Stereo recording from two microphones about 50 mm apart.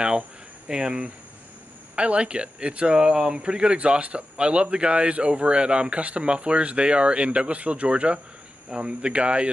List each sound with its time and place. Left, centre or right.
0.7 s speech: centre